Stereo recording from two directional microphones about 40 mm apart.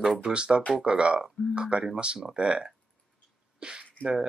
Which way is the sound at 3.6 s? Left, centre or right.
Right.